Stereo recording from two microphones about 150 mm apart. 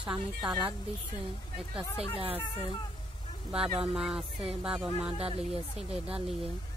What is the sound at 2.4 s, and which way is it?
Speech, 30° left (ahead or behind).